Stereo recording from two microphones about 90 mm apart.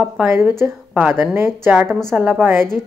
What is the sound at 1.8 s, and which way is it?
Speech, 5° left (ahead or behind).